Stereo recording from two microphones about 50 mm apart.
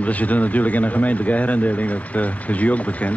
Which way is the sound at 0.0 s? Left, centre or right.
Left.